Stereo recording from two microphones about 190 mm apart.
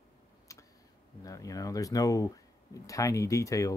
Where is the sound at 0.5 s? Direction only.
15° left (ahead or behind).